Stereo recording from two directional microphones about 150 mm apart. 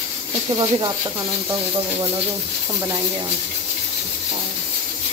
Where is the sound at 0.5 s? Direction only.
30° right (ahead or behind).